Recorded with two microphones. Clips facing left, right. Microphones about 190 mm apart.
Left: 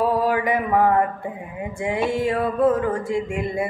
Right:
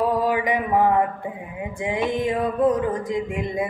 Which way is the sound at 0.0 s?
15° right (ahead or behind).